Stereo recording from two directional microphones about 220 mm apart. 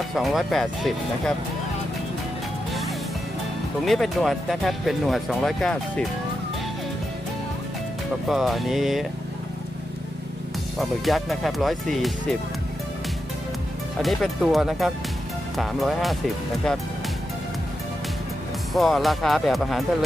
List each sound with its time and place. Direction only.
0.1 s speech: centre (ahead or behind)
3.8 s speech: centre (ahead or behind)
8.3 s speech: centre (ahead or behind)
10.8 s speech: centre (ahead or behind)
14.0 s speech: centre (ahead or behind)
18.7 s speech: centre (ahead or behind)